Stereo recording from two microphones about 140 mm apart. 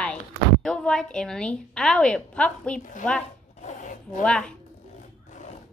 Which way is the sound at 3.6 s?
65° left (ahead or behind).